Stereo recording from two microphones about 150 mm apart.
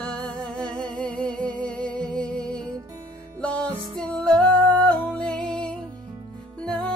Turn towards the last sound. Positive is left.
turn(degrees=5)  # may be behind; listen again after turning